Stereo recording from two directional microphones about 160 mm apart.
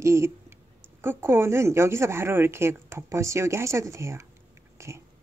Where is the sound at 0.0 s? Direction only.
15° right (ahead or behind).